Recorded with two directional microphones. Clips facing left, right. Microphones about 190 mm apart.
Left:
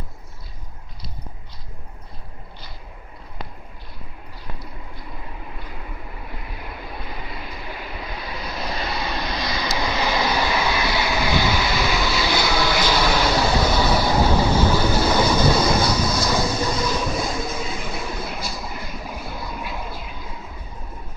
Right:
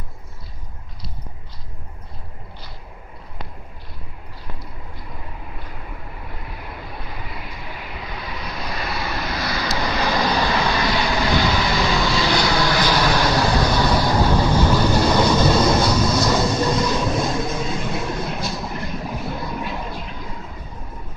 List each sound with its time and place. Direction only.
8.6 s vehicle: 25° left (ahead or behind); by 16.3 s centre (ahead or behind)
16.4 s train: centre (ahead or behind)
18.7 s vehicle: centre (ahead or behind)
19.4 s music: 5° left (ahead or behind)